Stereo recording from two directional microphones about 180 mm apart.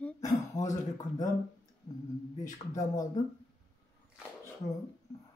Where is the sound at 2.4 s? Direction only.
20° left (ahead or behind).